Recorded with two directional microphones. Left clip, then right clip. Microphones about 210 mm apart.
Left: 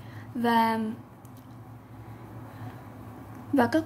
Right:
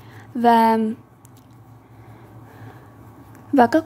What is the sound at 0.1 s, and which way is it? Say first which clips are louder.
Speech: right 10 dB; 35° right (ahead or behind).